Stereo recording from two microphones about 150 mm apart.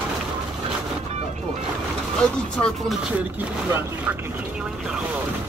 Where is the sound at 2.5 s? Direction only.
5° left (ahead or behind).